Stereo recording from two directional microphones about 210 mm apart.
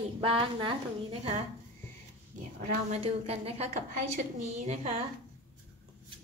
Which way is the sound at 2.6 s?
30° right (ahead or behind).